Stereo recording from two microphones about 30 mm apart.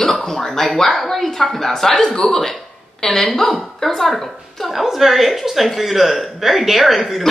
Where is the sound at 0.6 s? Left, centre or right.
Centre.